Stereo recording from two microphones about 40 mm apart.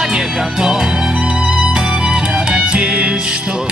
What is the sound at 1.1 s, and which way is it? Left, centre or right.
Music, right.